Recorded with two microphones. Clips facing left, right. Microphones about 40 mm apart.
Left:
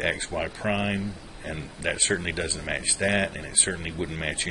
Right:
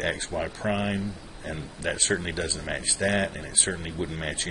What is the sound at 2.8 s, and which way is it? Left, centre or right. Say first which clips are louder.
Speech: even; centre.